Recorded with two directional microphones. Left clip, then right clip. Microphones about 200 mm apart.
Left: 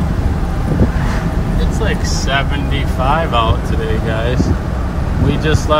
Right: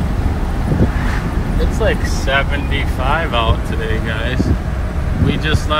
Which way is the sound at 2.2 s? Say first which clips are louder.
Right 1 dB; 10° left (ahead or behind).